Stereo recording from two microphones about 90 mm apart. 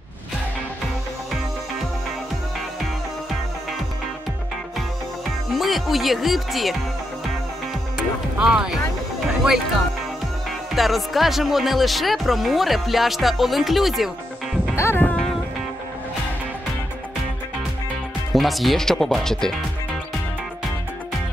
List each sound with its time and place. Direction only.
5.6 s speech: centre (ahead or behind)
8.4 s speech: 10° right (ahead or behind)
10.8 s speech: centre (ahead or behind)
14.8 s music: 30° left (ahead or behind)
15.0 s music: 10° left (ahead or behind)
18.3 s speech: centre (ahead or behind)